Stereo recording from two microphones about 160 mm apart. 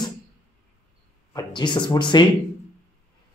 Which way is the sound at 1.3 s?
30° left (ahead or behind).